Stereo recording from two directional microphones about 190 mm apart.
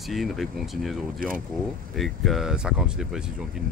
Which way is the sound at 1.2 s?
45° right (ahead or behind).